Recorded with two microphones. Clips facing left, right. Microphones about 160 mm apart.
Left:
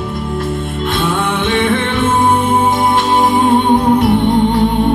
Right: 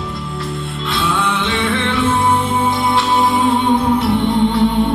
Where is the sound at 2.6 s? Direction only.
45° left (ahead or behind).